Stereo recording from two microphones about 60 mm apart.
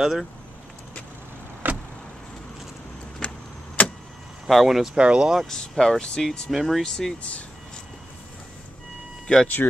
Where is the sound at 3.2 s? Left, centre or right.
Centre.